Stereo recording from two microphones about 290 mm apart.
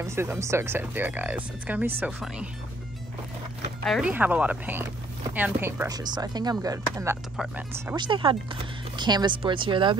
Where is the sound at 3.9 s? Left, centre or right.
Centre.